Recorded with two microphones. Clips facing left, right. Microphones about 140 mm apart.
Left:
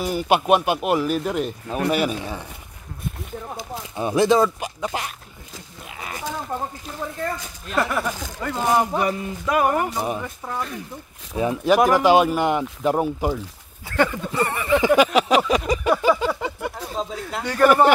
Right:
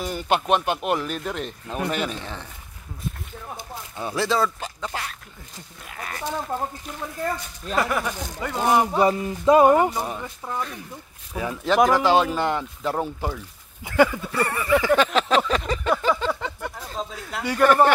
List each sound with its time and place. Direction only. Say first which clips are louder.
0.0 s speech: left 4 dB; 10° left (ahead or behind)
3.9 s speech: left 7 dB; 20° left (ahead or behind)
5.9 s sheep: even; 5° left (ahead or behind)
7.7 s speech: left 1 dB; centre (ahead or behind)
9.0 s speech: right 5 dB; 25° right (ahead or behind)
9.9 s speech: left 3 dB; 15° left (ahead or behind)
11.3 s speech: left 3 dB; 20° left (ahead or behind)
13.8 s speech: right 2 dB; 10° right (ahead or behind)
14.3 s a sound: left 1 dB; 20° left (ahead or behind)
17.3 s speech: left 1 dB; 5° right (ahead or behind)
17.6 s speech: left 2 dB; 10° left (ahead or behind)